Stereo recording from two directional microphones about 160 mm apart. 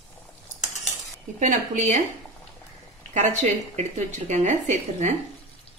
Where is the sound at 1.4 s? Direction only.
50° right (ahead or behind).